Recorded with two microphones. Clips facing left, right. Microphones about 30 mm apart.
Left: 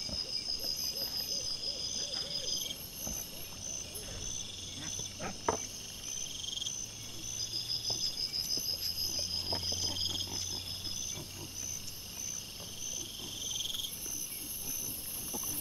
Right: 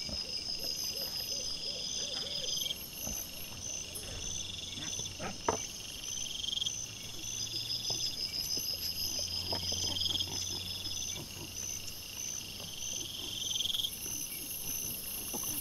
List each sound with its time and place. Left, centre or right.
2.2 s a sound: centre
5.2 s cricket: centre
6.4 s frog: right
8.5 s frog: centre
12.9 s frog: centre